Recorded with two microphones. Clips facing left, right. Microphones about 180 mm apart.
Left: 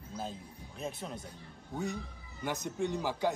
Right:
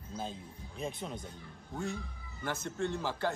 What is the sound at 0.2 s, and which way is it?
Speech, 5° left (ahead or behind).